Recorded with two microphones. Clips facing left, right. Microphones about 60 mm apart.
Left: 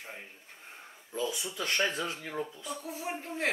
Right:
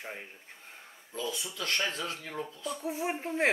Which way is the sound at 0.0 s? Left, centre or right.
Right.